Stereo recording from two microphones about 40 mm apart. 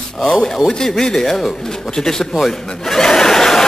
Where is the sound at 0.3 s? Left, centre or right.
Centre.